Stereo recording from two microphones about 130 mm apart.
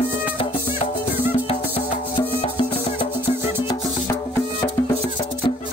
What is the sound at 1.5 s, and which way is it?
Music, 45° left (ahead or behind).